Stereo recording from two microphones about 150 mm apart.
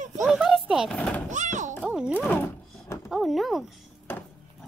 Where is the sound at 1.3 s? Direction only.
55° right (ahead or behind).